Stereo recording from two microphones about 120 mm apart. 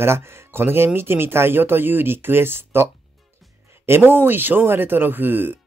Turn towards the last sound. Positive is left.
turn(degrees=-15)  # may be behind; listen again after turning